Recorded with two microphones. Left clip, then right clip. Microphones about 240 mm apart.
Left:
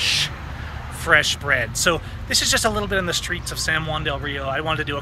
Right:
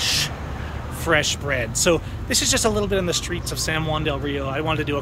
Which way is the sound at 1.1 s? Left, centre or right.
Centre.